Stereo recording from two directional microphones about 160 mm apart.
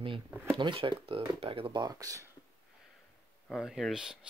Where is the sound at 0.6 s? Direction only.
30° right (ahead or behind).